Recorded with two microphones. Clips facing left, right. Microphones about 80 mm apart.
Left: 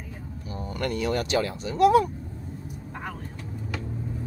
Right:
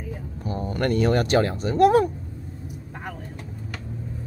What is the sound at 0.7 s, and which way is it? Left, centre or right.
Speech, right.